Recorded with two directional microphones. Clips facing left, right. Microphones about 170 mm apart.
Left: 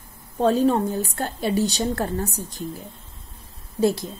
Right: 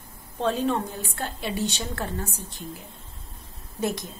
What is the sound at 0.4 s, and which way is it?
A woman's voice, 40° left (ahead or behind).